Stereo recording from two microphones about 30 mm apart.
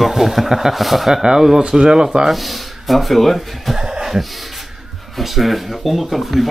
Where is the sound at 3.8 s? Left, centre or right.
Right.